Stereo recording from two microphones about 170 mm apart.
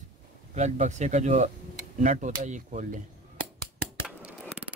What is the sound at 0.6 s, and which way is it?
Speech, 45° right (ahead or behind).